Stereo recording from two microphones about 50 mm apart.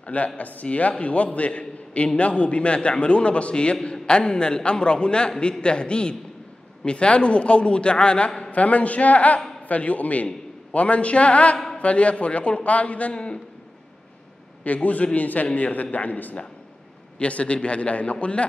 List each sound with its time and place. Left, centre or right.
0.0 s a man's voice: left
11.5 s a sound: centre
11.8 s a man's voice: left
14.6 s a man's voice: left